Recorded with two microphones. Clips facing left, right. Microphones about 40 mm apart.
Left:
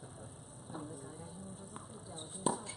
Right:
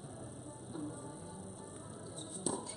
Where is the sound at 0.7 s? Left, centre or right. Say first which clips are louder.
Right 2 dB; centre.